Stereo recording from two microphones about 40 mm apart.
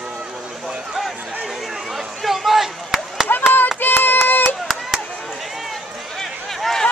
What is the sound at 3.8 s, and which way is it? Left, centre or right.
Hands, left.